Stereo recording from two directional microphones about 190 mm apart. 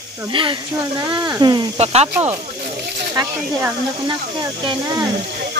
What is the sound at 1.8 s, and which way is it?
Speech, 35° right (ahead or behind).